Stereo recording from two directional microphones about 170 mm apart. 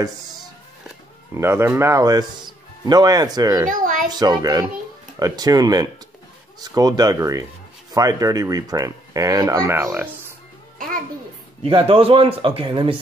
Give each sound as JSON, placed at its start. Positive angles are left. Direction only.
{"t": 1.3, "sound": "speech", "side_deg": -15}
{"t": 3.6, "sound": "a sound", "side_deg": -50}
{"t": 4.1, "sound": "speech", "side_deg": -25}
{"t": 11.6, "sound": "a man's voice", "side_deg": -35}